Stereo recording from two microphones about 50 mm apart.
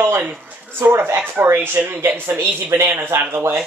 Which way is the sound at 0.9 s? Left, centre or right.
Right.